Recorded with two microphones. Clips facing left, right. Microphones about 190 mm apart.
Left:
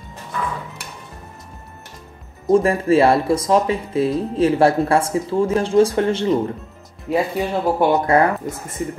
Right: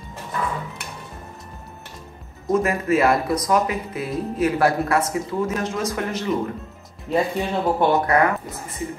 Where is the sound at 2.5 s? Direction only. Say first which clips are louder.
Left 5 dB; 30° left (ahead or behind).